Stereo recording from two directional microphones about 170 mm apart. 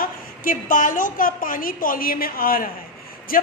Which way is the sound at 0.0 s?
55° left (ahead or behind).